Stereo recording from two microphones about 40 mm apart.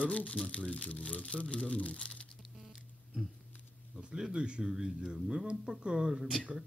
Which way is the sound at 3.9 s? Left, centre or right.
Right.